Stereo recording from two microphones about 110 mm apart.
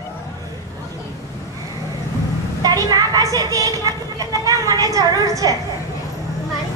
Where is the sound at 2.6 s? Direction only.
35° right (ahead or behind).